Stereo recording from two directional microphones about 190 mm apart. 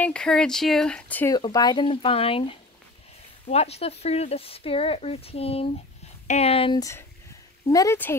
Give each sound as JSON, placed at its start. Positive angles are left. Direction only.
{"t": 0.0, "sound": "speech", "side_deg": 5}
{"t": 1.3, "sound": "speech", "side_deg": 20}
{"t": 3.4, "sound": "speech", "side_deg": 35}
{"t": 6.8, "sound": "a woman's voice", "side_deg": 15}